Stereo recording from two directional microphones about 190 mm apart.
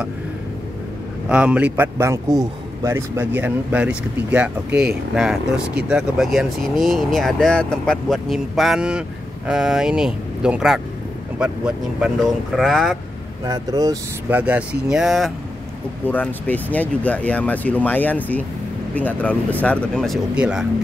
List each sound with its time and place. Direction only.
1.3 s a man's voice: 5° right (ahead or behind)
13.5 s speech: 20° right (ahead or behind)
14.3 s speech: 5° right (ahead or behind)